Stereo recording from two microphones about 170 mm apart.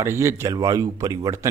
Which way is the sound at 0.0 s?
15° right (ahead or behind).